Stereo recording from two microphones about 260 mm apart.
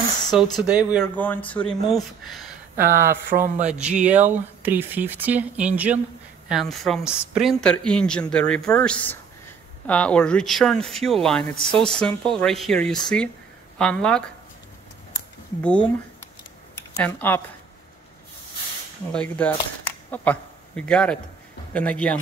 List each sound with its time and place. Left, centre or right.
0.3 s speech: centre
2.8 s speech: right
3.7 s speech: centre
16.9 s speech: centre
19.1 s a man's voice: centre